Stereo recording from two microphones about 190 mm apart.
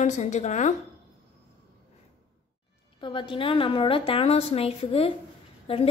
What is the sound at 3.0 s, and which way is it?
A woman's voice, 25° left (ahead or behind).